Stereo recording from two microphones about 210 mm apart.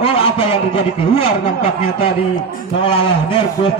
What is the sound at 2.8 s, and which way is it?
Speech, 25° left (ahead or behind).